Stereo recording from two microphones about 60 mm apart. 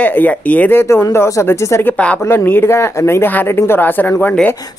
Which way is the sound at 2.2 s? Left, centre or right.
Left.